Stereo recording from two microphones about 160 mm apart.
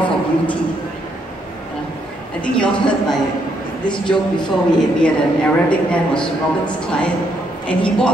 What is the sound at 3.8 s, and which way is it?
Speech, 30° left (ahead or behind).